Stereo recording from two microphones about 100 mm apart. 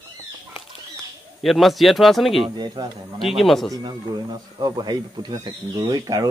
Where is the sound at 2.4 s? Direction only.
45° right (ahead or behind).